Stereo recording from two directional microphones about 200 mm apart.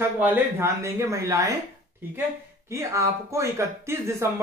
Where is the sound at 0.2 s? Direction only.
10° right (ahead or behind).